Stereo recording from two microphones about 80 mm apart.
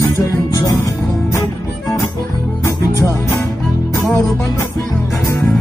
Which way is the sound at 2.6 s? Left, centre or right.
Left.